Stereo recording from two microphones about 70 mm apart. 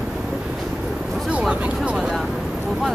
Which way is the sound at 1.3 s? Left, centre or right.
Centre.